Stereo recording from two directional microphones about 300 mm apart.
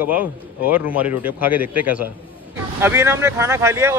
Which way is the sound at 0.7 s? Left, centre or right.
Centre.